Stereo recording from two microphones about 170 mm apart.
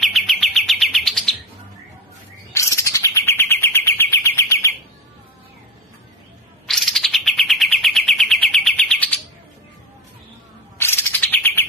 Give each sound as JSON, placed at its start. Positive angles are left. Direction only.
{"t": 0.0, "sound": "bird", "side_deg": 0}
{"t": 2.5, "sound": "bird", "side_deg": 15}
{"t": 6.7, "sound": "bird", "side_deg": 0}
{"t": 10.8, "sound": "bird", "side_deg": 10}